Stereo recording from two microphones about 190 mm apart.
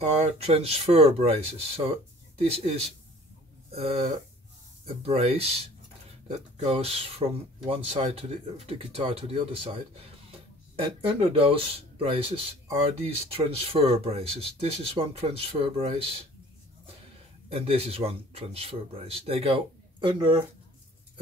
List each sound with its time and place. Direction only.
0.1 s speech: 35° right (ahead or behind)
2.3 s speech: 30° right (ahead or behind)
11.0 s speech: 30° right (ahead or behind)
17.5 s speech: 30° right (ahead or behind)